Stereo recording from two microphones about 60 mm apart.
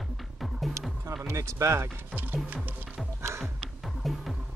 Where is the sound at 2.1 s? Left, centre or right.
Right.